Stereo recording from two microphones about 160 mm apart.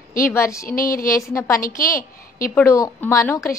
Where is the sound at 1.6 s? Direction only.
60° left (ahead or behind).